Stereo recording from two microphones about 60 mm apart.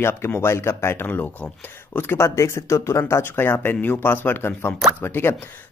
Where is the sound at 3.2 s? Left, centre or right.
Left.